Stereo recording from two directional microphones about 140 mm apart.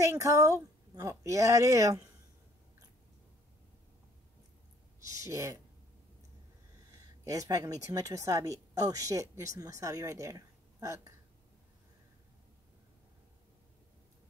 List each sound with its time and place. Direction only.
0.0 s speech: 20° right (ahead or behind)
5.0 s speech: 20° right (ahead or behind)
7.2 s speech: 25° right (ahead or behind)